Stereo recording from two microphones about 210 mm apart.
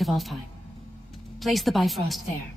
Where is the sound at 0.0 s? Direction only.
Centre (ahead or behind).